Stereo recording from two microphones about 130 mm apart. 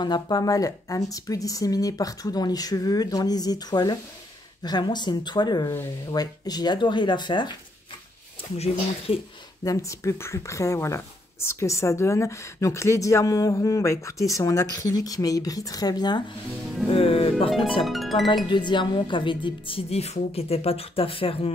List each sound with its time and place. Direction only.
0.0 s speech: 30° left (ahead or behind)
8.5 s a woman's voice: 50° left (ahead or behind)
9.7 s speech: 25° left (ahead or behind)
16.9 s a woman's voice: 50° left (ahead or behind)
17.8 s music: centre (ahead or behind)
18.5 s a woman's voice: 35° left (ahead or behind)